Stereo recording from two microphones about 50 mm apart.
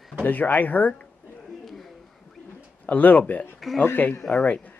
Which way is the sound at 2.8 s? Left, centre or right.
Left.